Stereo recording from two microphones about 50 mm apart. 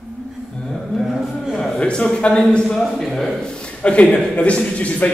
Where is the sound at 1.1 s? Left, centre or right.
Centre.